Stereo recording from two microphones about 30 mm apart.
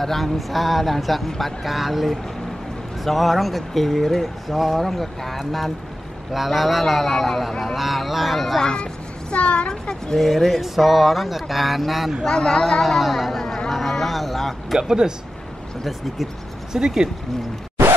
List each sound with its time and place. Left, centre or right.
0.0 s speech: centre
7.6 s speech: centre
9.3 s a child's voice: left
9.7 s speech: left
10.1 s speech: centre
10.6 s speech: centre
12.3 s speech: left
12.8 s speech: centre
14.8 s speech: right
16.7 s speech: centre